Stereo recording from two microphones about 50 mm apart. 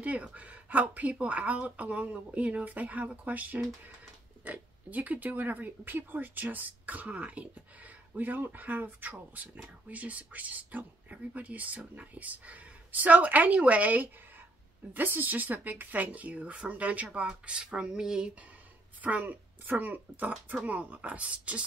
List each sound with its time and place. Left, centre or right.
0.0 s speech: right
8.2 s speech: right
17.5 s a sound: centre
18.9 s speech: right